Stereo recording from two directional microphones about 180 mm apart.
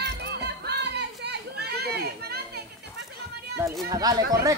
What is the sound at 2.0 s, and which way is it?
Children playing, 60° right (ahead or behind).